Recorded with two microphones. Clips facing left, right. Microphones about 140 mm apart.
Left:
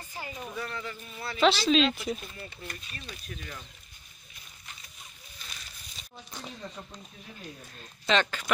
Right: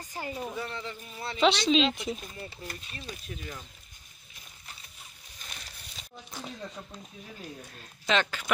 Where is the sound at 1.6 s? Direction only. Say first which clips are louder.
Left 1 dB; 20° right (ahead or behind).